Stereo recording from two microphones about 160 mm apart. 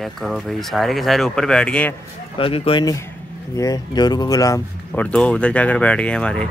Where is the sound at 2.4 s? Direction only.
35° left (ahead or behind).